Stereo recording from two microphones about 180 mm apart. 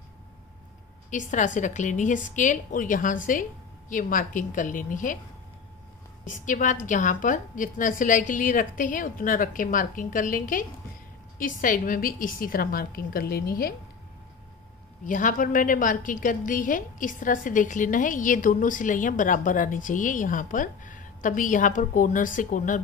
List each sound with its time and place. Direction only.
1.1 s a woman's voice: 45° left (ahead or behind)
6.2 s a woman's voice: 45° left (ahead or behind)
15.0 s a woman's voice: 45° left (ahead or behind)